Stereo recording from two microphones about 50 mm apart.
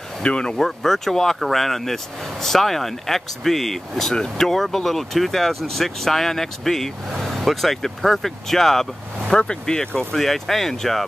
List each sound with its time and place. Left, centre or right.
0.2 s speech: left
0.7 s speech: centre
9.3 s speech: centre